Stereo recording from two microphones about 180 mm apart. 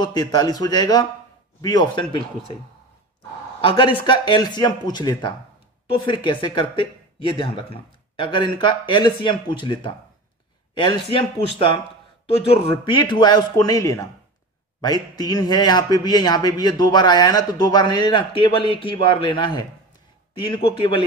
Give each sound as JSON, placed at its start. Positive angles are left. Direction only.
{"t": 0.0, "sound": "a man's voice", "side_deg": 20}
{"t": 3.6, "sound": "a man's voice", "side_deg": 30}